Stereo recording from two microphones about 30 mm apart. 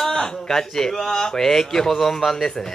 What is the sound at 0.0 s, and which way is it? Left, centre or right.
A man's voice, centre.